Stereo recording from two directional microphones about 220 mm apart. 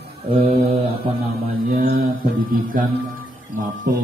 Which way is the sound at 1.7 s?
40° right (ahead or behind).